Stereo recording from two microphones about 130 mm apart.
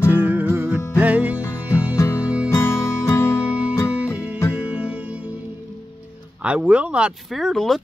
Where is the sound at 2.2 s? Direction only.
10° right (ahead or behind).